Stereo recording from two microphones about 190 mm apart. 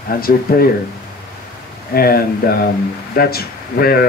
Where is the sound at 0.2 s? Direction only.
50° left (ahead or behind).